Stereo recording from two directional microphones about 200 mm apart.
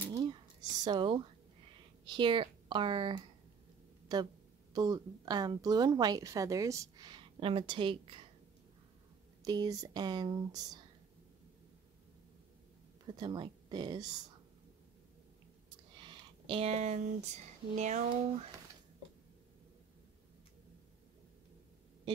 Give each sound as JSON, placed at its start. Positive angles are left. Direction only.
{"t": 0.1, "sound": "a sound", "side_deg": -20}
{"t": 2.0, "sound": "speech", "side_deg": -25}
{"t": 9.4, "sound": "speech", "side_deg": -20}
{"t": 13.0, "sound": "speech", "side_deg": -20}
{"t": 16.0, "sound": "speech", "side_deg": -25}